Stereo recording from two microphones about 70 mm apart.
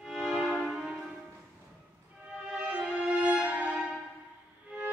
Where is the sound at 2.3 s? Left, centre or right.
Centre.